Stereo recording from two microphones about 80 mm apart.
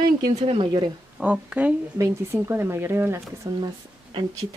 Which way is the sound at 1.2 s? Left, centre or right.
Centre.